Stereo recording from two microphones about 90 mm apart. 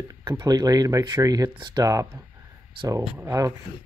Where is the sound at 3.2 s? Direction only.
30° right (ahead or behind).